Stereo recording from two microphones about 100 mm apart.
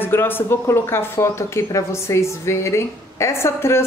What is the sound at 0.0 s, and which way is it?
Speech, 20° left (ahead or behind).